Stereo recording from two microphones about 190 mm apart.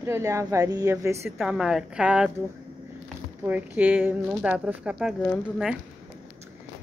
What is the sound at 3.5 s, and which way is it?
A woman's voice, 5° right (ahead or behind).